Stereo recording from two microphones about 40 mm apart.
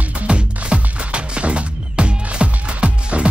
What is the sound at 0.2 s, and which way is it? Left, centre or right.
Music, right.